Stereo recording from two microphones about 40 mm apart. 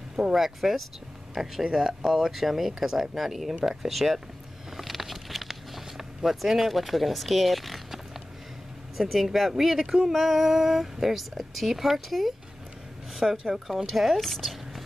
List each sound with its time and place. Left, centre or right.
0.1 s speech: centre
1.3 s speech: centre
4.7 s a sound: centre
9.1 s speech: centre
13.1 s a sound: centre
13.9 s speech: centre